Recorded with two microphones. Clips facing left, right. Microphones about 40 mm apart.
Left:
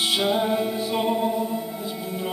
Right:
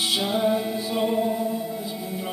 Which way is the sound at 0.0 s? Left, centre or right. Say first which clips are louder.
Left 1 dB; left.